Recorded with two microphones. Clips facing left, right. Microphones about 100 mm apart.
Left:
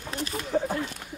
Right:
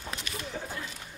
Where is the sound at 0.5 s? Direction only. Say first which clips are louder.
Left 15 dB; 50° left (ahead or behind).